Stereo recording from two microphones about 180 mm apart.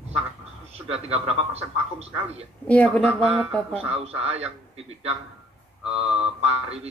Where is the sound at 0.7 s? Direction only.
35° right (ahead or behind).